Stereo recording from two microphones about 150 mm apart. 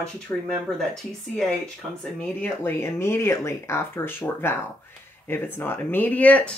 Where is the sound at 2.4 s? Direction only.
15° left (ahead or behind).